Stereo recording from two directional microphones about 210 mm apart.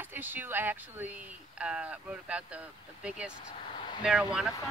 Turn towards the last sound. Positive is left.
turn(degrees=-5)  # may be behind; listen again after turning